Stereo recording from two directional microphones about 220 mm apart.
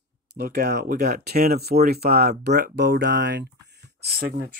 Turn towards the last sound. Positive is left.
turn(degrees=-40)  # may be behind; listen again after turning